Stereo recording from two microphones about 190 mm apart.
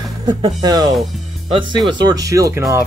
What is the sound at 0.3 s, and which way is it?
Speech, 20° right (ahead or behind).